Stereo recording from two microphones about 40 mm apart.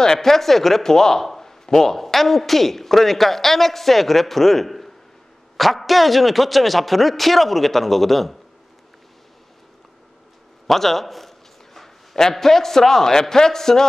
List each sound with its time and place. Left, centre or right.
0.0 s speech: centre
10.7 s a man's voice: centre